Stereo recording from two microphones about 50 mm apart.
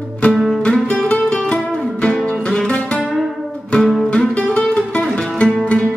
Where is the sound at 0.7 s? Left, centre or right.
Centre.